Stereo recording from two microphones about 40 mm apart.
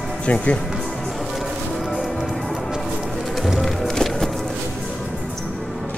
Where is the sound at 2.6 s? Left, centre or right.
Centre.